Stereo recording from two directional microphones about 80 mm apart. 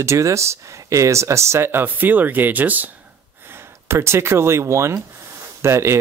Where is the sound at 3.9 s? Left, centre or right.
Right.